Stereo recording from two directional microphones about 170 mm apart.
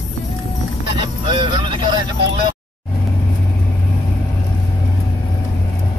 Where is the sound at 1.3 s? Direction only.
30° right (ahead or behind).